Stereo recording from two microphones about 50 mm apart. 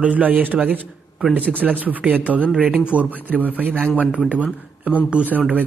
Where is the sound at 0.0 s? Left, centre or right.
Right.